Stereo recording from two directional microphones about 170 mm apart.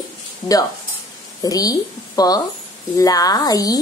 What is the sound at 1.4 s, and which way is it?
Speech, 20° left (ahead or behind).